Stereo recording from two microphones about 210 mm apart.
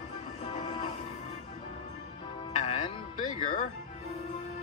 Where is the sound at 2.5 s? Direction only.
30° left (ahead or behind).